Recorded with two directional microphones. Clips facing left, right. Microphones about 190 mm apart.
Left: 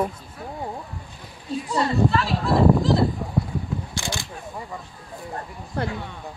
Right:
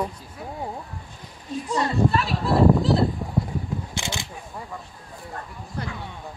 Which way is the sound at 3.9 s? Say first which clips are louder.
Left 1 dB; 20° right (ahead or behind).